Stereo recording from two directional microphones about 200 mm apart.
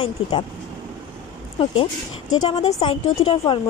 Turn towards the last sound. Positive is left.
turn(degrees=25)  # may be behind; listen again after turning